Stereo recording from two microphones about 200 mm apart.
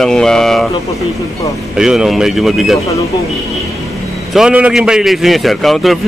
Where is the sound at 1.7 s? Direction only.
5° right (ahead or behind).